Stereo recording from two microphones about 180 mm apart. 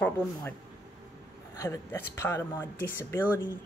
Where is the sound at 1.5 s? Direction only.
15° left (ahead or behind).